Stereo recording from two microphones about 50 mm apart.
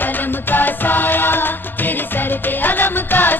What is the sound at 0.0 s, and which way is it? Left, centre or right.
Music, left.